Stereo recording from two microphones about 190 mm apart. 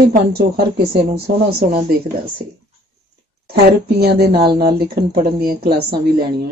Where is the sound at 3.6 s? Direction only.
60° right (ahead or behind).